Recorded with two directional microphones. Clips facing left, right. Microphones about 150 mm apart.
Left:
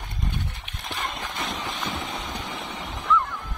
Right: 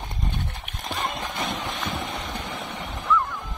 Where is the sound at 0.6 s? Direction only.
40° right (ahead or behind).